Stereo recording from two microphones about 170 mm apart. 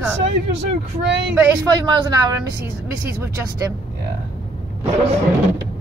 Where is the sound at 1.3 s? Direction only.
15° right (ahead or behind).